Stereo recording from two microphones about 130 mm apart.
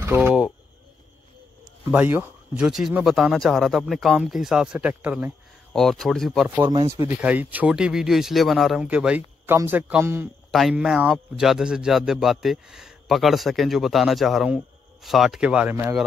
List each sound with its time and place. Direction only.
0.2 s speech: 5° right (ahead or behind)
1.9 s speech: 15° right (ahead or behind)
5.7 s speech: 5° left (ahead or behind)
6.7 s speech: 30° right (ahead or behind)
7.2 s speech: 10° right (ahead or behind)
8.8 s speech: 10° right (ahead or behind)